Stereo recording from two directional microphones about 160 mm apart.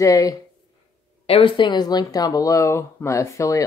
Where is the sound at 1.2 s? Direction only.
35° left (ahead or behind).